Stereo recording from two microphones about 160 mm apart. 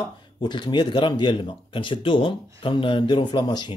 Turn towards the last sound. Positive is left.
turn(degrees=25)  # may be behind; listen again after turning